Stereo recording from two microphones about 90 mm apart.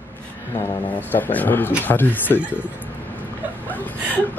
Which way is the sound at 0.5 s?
20° left (ahead or behind).